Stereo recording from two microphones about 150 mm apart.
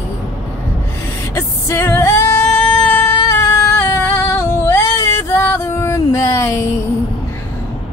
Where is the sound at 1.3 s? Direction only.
15° left (ahead or behind).